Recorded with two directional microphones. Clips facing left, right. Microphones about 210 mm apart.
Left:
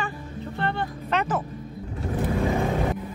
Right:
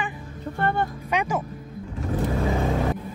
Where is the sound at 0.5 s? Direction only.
50° right (ahead or behind).